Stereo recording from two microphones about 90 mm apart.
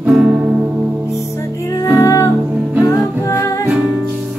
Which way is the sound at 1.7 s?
40° left (ahead or behind).